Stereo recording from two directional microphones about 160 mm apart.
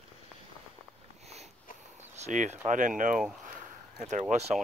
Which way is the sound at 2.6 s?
55° right (ahead or behind).